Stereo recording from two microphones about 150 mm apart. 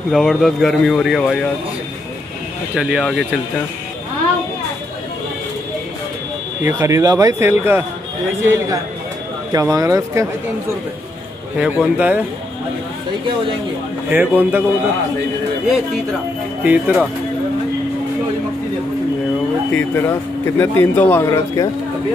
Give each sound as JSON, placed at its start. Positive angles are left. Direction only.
{"t": 0.1, "sound": "speech", "side_deg": 0}
{"t": 2.7, "sound": "speech", "side_deg": -5}
{"t": 6.6, "sound": "speech", "side_deg": -20}
{"t": 9.5, "sound": "speech", "side_deg": -25}
{"t": 11.6, "sound": "speech", "side_deg": -10}
{"t": 14.1, "sound": "speech", "side_deg": -10}
{"t": 16.6, "sound": "speech", "side_deg": -10}
{"t": 19.7, "sound": "a man's voice", "side_deg": 15}